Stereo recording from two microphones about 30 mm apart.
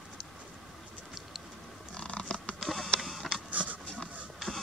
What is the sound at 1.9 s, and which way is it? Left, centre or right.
Scratch, left.